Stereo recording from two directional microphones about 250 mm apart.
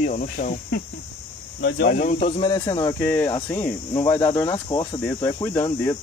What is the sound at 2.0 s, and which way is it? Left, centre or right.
Speech, left.